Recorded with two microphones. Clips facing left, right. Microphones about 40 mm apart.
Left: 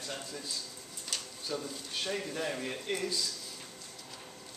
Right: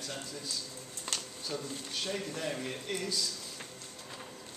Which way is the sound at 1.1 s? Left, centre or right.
Right.